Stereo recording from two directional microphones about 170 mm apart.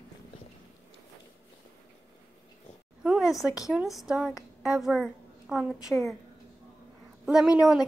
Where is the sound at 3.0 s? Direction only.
5° right (ahead or behind).